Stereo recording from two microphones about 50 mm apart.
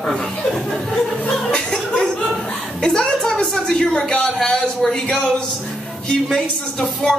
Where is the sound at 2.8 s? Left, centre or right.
Centre.